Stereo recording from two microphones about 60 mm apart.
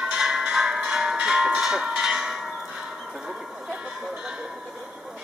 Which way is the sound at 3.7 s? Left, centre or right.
Centre.